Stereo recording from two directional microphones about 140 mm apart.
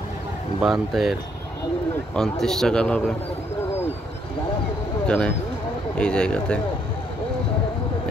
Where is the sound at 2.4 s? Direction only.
5° left (ahead or behind).